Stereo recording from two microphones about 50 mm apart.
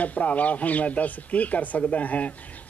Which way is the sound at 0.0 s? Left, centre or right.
Left.